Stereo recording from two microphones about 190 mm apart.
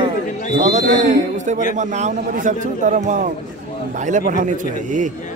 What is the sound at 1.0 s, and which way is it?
A man's voice, 40° right (ahead or behind).